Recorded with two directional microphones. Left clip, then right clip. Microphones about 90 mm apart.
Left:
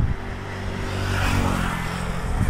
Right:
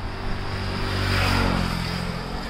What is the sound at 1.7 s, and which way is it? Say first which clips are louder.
Vehicle: left 1 dB; 55° left (ahead or behind).